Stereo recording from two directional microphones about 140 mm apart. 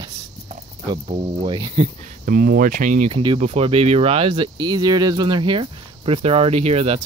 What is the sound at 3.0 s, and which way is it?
Speech, 40° right (ahead or behind).